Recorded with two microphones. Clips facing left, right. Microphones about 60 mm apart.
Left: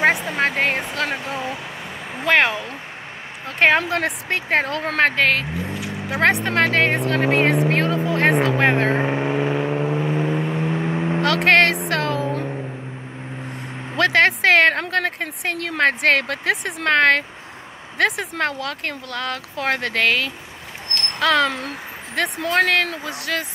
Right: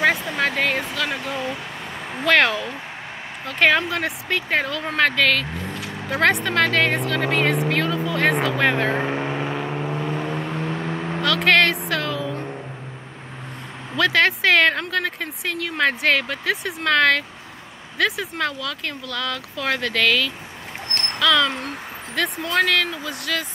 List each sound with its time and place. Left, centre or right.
0.1 s a sound: centre
0.5 s a sound: left
1.1 s speech: left
3.4 s speech: left
5.7 s vehicle: centre
6.4 s speech: left
8.9 s vehicle: centre
11.1 s vehicle: left
11.9 s a sound: left
13.9 s speech: left
16.8 s speech: left